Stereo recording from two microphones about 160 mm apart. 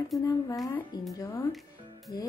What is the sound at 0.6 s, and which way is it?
Speech, 10° left (ahead or behind).